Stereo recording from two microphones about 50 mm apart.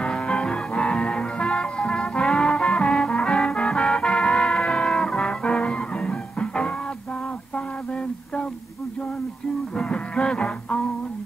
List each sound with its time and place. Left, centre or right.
0.0 s music: left
9.8 s music: centre